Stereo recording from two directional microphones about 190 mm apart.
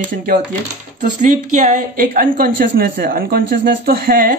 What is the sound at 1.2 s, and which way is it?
Speech, 40° right (ahead or behind).